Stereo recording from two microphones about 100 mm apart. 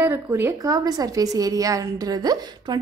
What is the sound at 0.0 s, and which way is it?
A woman's voice, 20° right (ahead or behind).